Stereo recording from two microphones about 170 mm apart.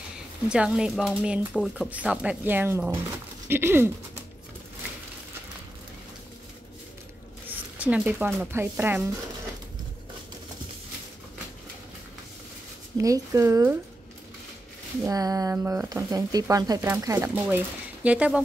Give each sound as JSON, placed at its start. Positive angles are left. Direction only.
{"t": 0.5, "sound": "speech", "side_deg": -5}
{"t": 7.4, "sound": "speech", "side_deg": -10}
{"t": 12.9, "sound": "speech", "side_deg": -20}
{"t": 15.0, "sound": "speech", "side_deg": -20}